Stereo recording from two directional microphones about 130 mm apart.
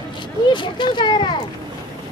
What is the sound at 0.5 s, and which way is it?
Speech, 35° left (ahead or behind).